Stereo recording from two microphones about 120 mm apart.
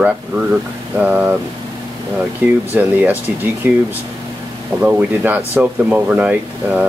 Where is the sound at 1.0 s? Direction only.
15° right (ahead or behind).